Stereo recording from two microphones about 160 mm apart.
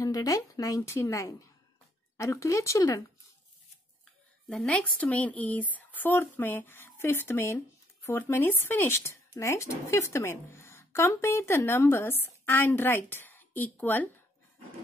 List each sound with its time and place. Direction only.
0.0 s a woman's voice: 20° left (ahead or behind)
4.0 s a woman's voice: 5° left (ahead or behind)